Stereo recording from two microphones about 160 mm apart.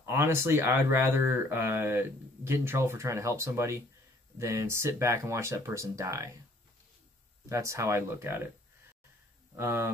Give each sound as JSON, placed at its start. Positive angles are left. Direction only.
{"t": 0.0, "sound": "speech", "side_deg": -15}
{"t": 7.4, "sound": "speech", "side_deg": -20}
{"t": 9.6, "sound": "speech", "side_deg": -15}